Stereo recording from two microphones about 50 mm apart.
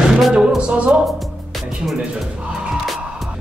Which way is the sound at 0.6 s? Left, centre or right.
Right.